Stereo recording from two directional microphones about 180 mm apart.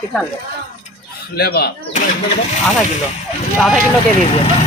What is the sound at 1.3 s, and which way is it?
Speech, 60° left (ahead or behind).